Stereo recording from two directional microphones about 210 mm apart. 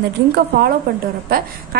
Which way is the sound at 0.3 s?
50° right (ahead or behind).